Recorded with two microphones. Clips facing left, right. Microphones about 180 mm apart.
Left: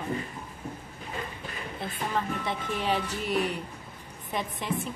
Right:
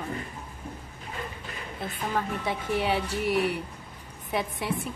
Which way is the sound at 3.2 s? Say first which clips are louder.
Right 3 dB; 75° right (ahead or behind).